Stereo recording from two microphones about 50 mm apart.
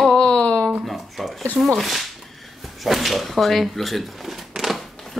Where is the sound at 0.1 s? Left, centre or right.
Left.